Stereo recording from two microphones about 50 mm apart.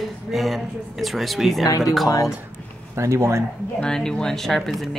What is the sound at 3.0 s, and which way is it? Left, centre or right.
Speech, right.